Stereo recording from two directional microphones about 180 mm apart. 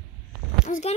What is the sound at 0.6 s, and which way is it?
Speech, 40° left (ahead or behind).